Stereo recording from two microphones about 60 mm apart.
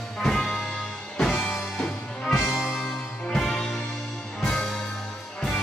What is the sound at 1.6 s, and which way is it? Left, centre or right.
Music, centre.